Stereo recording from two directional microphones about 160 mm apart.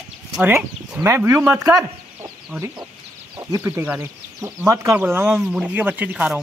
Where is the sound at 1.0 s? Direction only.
15° right (ahead or behind).